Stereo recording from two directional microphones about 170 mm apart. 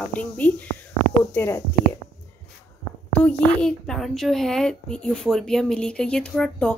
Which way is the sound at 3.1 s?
10° left (ahead or behind).